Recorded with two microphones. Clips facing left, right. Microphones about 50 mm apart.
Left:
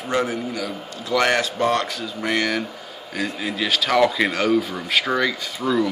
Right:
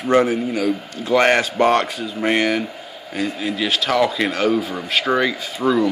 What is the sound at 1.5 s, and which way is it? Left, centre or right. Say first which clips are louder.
Speech: right 5 dB; right.